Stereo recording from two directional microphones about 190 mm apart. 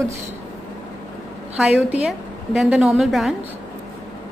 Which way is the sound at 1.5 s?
5° right (ahead or behind).